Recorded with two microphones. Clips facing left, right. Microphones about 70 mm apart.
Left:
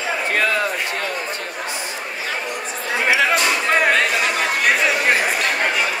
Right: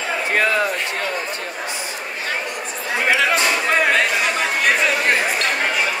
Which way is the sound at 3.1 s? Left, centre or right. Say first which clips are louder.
Even; centre.